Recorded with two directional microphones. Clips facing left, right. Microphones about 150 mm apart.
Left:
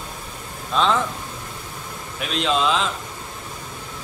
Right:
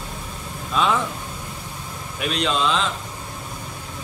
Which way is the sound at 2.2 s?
Centre (ahead or behind).